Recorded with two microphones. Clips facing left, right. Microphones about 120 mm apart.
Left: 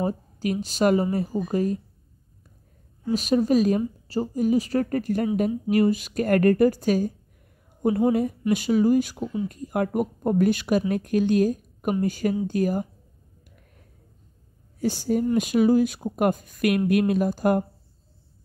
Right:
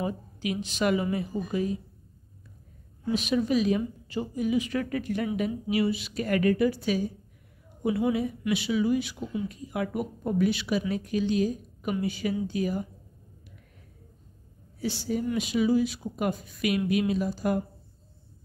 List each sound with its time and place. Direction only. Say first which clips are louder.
0.0 s a woman's voice: left 5 dB; 40° left (ahead or behind)
3.1 s a woman's voice: left 5 dB; 40° left (ahead or behind)
14.8 s speech: left 6 dB; 45° left (ahead or behind)